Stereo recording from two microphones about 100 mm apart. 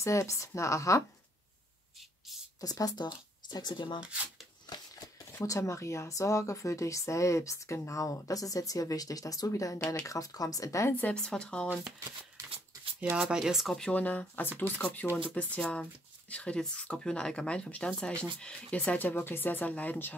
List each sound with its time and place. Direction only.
0.0 s speech: 30° left (ahead or behind)
2.6 s speech: 40° left (ahead or behind)
4.0 s speech: 15° right (ahead or behind)
4.6 s shuffling cards: 45° left (ahead or behind)
5.4 s speech: 30° left (ahead or behind)
11.0 s speech: 10° left (ahead or behind)
11.6 s speech: 5° right (ahead or behind)
13.1 s speech: 5° right (ahead or behind); by 20.2 s 15° left (ahead or behind)